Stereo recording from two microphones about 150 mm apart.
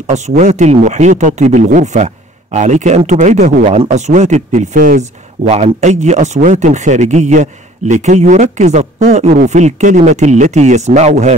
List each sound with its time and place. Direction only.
0.4 s a man's voice: 50° right (ahead or behind)
5.4 s a man's voice: 45° right (ahead or behind)